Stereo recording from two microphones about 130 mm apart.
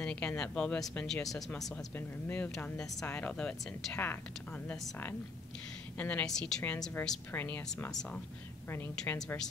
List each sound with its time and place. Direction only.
0.0 s a sound: 10° left (ahead or behind)
0.4 s speech: 5° left (ahead or behind)
2.0 s speech: 15° left (ahead or behind)
5.9 s speech: 10° left (ahead or behind)
8.6 s speech: 15° left (ahead or behind)